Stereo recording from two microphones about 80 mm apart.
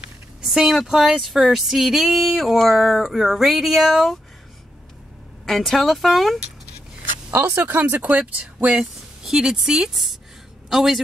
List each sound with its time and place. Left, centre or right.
0.4 s speech: centre
5.4 s speech: centre
7.2 s speech: right
9.2 s a man's voice: centre